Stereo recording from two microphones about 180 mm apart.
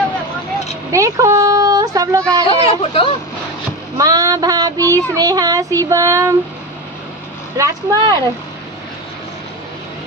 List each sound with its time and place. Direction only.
0.9 s speech: 15° right (ahead or behind)
2.4 s speech: 30° left (ahead or behind)
4.0 s child singing: 20° right (ahead or behind)
7.5 s child singing: 20° right (ahead or behind)